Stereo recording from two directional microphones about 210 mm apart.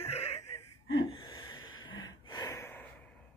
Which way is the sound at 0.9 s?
25° left (ahead or behind).